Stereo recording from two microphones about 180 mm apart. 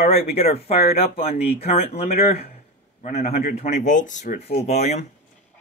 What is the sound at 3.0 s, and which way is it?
Speech, 35° left (ahead or behind).